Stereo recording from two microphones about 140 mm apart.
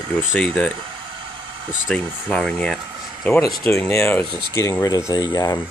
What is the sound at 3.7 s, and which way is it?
Speech, 20° left (ahead or behind).